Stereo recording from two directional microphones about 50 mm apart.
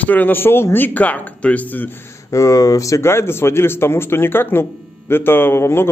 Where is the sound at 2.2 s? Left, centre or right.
Left.